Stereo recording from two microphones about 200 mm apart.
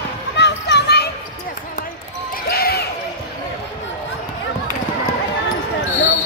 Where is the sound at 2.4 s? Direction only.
50° left (ahead or behind).